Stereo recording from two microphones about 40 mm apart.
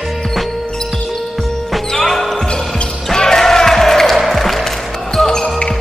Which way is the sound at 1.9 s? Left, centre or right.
Centre.